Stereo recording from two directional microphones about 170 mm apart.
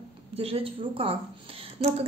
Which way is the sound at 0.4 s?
35° right (ahead or behind).